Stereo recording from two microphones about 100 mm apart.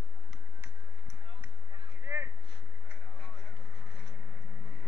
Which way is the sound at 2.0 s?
30° right (ahead or behind).